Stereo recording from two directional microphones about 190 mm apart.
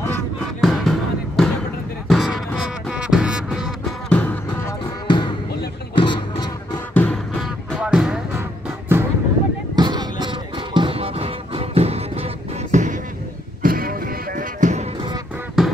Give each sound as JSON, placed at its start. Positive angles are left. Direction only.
{"t": 0.6, "sound": "music", "side_deg": 0}
{"t": 4.1, "sound": "music", "side_deg": 10}
{"t": 5.0, "sound": "music", "side_deg": 25}
{"t": 6.9, "sound": "music", "side_deg": 10}
{"t": 7.3, "sound": "music", "side_deg": 0}
{"t": 9.8, "sound": "music", "side_deg": -20}
{"t": 12.7, "sound": "a sound", "side_deg": -40}
{"t": 13.6, "sound": "music", "side_deg": -50}
{"t": 15.6, "sound": "music", "side_deg": -5}